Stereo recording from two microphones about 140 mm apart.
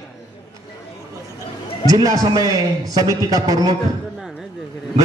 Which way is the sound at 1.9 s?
25° right (ahead or behind).